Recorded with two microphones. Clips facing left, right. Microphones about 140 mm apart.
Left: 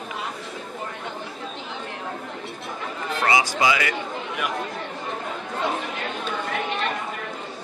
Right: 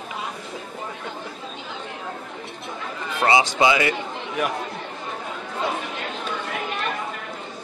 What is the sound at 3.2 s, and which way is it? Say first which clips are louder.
Speech: right 3 dB; 25° right (ahead or behind).